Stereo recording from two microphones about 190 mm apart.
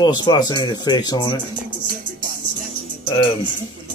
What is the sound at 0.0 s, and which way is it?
Speech, 20° left (ahead or behind).